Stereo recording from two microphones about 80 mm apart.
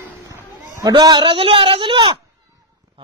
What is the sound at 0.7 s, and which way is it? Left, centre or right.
A man's voice, right.